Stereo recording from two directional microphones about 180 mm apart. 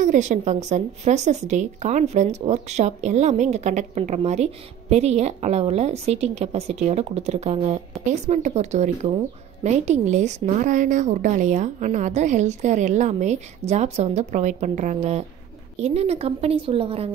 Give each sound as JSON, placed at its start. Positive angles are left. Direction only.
{"t": 0.0, "sound": "a woman's voice", "side_deg": -45}